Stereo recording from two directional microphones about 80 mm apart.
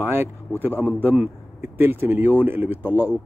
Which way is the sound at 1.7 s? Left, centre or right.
Right.